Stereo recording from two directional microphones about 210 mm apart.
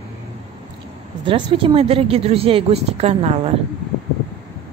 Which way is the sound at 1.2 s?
25° right (ahead or behind).